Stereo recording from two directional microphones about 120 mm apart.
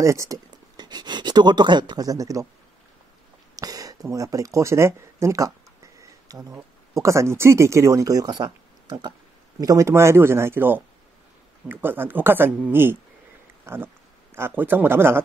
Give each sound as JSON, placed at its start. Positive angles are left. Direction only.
{"t": 0.0, "sound": "speech", "side_deg": -25}
{"t": 0.7, "sound": "speech", "side_deg": -35}
{"t": 3.5, "sound": "speech", "side_deg": -30}